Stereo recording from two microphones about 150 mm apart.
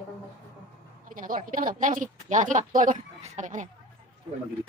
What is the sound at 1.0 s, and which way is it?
A woman's voice, 65° right (ahead or behind).